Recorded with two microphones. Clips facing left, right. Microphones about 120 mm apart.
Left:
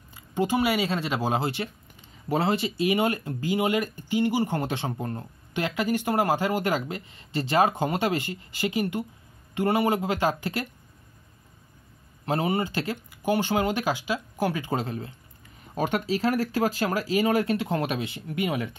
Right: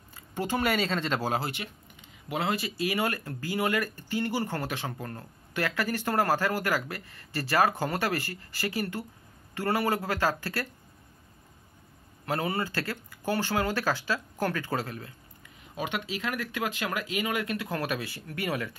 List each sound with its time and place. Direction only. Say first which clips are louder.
0.1 s speech: left 5 dB; 15° left (ahead or behind)
12.3 s speech: left 4 dB; 20° left (ahead or behind)
15.7 s speech: left 7 dB; 40° left (ahead or behind); by 18.8 s 20° left (ahead or behind)